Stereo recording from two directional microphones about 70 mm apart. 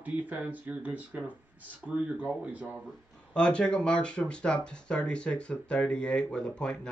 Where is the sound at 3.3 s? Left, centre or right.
Centre.